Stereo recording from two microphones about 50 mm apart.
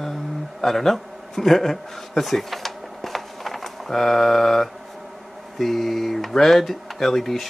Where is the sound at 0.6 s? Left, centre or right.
Centre.